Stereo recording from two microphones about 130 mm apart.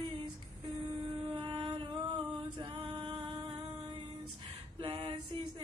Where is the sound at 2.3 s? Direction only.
40° right (ahead or behind).